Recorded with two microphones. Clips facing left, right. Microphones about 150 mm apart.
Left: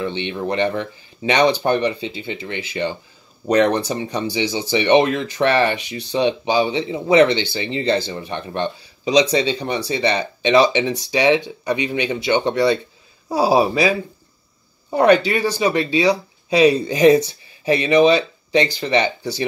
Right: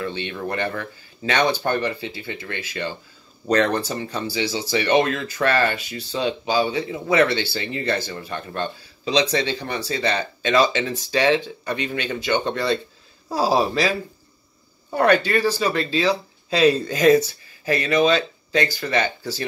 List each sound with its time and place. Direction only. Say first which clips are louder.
0.0 s speech: left 4 dB; 20° left (ahead or behind)